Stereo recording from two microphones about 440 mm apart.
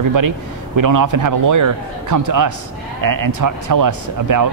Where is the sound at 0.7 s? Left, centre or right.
Right.